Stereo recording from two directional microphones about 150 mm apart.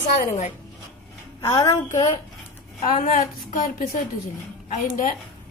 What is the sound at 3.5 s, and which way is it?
Speech, 60° left (ahead or behind).